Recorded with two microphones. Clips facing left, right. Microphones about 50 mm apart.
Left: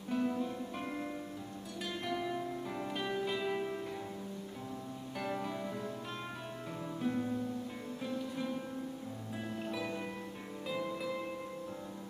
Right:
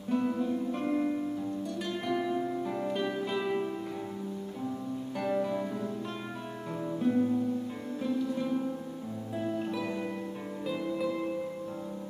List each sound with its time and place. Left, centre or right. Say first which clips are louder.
0.1 s music: right 5 dB; centre
0.8 s music: right 13 dB; right
1.9 s music: right 5 dB; centre
5.2 s music: right 8 dB; centre
7.0 s music: right 8 dB; centre
9.4 s music: right 7 dB; centre